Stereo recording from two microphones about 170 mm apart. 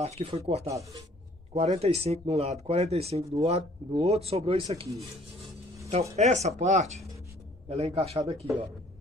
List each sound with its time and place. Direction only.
0.0 s speech: 35° right (ahead or behind)
0.7 s speech: 20° right (ahead or behind)
1.5 s speech: 40° right (ahead or behind)